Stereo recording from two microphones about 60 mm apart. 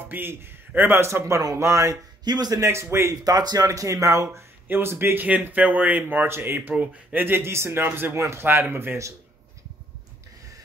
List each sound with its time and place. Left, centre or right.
0.0 s a man's voice: right
1.0 s speech: right
2.6 s speech: right
3.3 s speech: right
4.6 s speech: right
5.2 s speech: right
8.2 s speech: right